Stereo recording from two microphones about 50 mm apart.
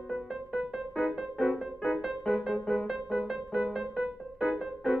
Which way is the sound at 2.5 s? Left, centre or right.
Centre.